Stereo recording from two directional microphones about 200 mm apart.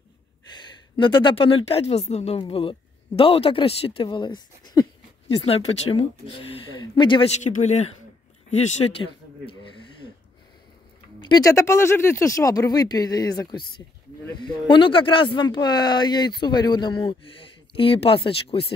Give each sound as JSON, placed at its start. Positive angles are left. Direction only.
{"t": 0.5, "sound": "a woman's voice", "side_deg": 25}
{"t": 11.1, "sound": "speech", "side_deg": 20}